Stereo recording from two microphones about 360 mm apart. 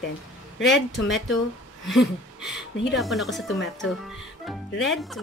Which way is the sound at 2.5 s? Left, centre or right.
Centre.